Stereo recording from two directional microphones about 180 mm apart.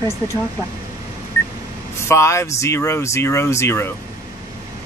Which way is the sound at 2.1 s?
15° left (ahead or behind).